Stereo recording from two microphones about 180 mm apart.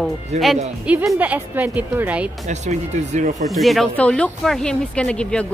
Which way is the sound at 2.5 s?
40° right (ahead or behind).